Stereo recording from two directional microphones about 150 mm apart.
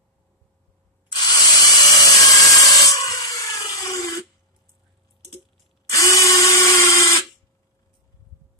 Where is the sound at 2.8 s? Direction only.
25° left (ahead or behind).